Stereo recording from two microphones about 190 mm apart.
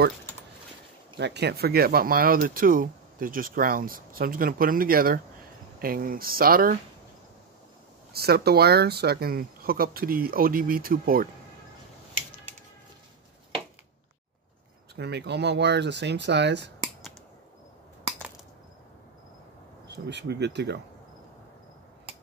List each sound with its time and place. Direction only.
1.1 s speech: 65° right (ahead or behind)
8.1 s speech: 55° right (ahead or behind)
15.0 s speech: 60° right (ahead or behind)
20.1 s speech: 65° right (ahead or behind)